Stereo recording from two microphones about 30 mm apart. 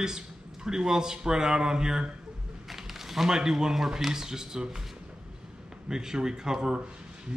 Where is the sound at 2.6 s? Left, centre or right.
Centre.